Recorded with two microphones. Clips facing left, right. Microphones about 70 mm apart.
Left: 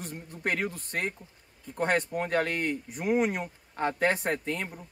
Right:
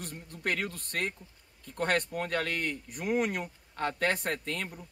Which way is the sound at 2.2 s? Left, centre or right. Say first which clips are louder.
Left 4 dB; centre.